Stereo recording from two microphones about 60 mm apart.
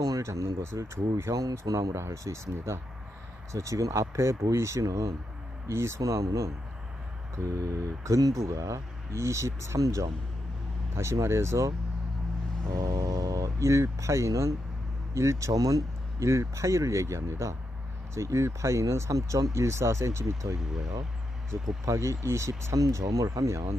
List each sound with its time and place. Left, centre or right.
0.2 s speech: right
1.3 s speech: right
1.6 s speech: right
3.5 s speech: right
5.7 s speech: right
8.5 s speech: right
9.8 s speech: right
11.0 s speech: right
12.7 s speech: right
13.6 s speech: right
16.2 s speech: right
19.5 s speech: right
21.5 s speech: right
22.8 s speech: right